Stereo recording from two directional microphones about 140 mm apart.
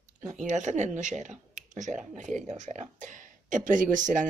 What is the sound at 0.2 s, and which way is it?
Speech, 60° right (ahead or behind).